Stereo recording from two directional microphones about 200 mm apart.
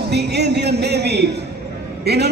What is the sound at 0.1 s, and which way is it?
A man's voice, 55° right (ahead or behind).